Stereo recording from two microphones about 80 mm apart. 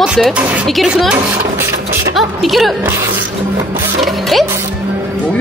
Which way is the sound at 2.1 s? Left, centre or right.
Centre.